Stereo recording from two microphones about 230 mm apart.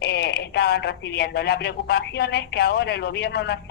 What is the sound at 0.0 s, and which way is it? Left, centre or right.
Speech, left.